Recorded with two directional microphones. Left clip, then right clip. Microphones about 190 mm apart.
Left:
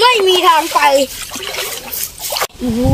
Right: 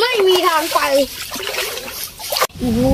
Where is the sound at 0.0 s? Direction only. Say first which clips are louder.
Left 4 dB; 65° left (ahead or behind).